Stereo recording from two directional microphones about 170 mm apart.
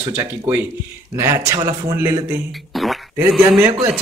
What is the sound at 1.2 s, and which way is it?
Speech, 15° right (ahead or behind).